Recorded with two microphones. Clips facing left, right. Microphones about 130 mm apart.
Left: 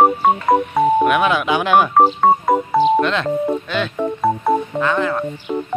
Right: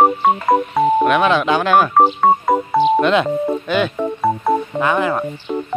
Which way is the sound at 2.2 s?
Centre (ahead or behind).